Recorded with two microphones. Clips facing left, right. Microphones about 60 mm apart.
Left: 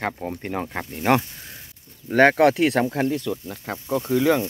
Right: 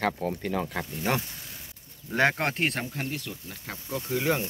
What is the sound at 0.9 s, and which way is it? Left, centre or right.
Speech, left.